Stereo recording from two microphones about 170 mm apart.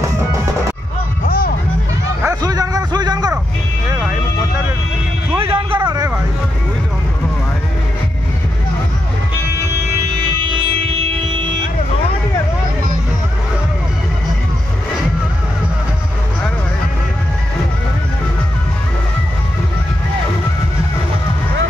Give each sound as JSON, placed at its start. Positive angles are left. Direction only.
{"t": 1.2, "sound": "music", "side_deg": 60}
{"t": 2.2, "sound": "a sound", "side_deg": -20}
{"t": 5.3, "sound": "vehicle", "side_deg": -30}
{"t": 10.2, "sound": "music", "side_deg": -30}